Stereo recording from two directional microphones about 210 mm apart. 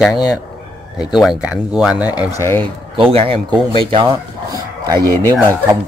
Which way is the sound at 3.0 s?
25° right (ahead or behind).